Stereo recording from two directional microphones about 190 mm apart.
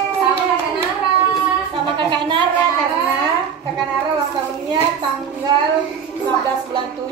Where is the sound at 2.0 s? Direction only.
25° right (ahead or behind).